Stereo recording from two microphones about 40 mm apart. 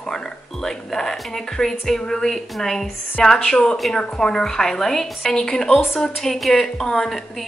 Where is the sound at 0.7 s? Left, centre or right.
Centre.